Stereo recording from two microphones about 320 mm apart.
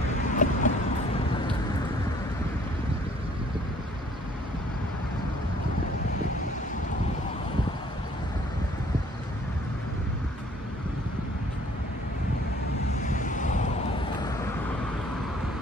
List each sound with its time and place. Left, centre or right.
0.3 s vehicle: left
13.0 s waves: left